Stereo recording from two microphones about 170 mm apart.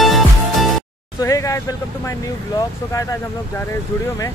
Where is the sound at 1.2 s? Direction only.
20° left (ahead or behind).